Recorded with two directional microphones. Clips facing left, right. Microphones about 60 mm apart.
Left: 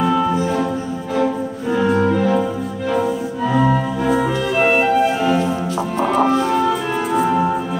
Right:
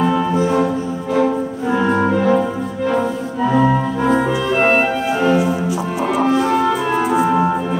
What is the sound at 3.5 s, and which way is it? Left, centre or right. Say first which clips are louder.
Organ: right 1 dB; centre.